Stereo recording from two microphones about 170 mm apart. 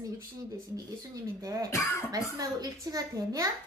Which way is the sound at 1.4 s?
20° right (ahead or behind).